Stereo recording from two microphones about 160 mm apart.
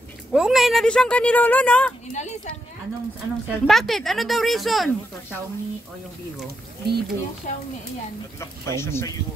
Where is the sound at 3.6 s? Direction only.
Centre (ahead or behind).